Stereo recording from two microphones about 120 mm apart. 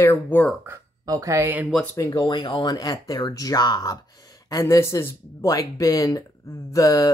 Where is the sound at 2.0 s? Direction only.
30° left (ahead or behind).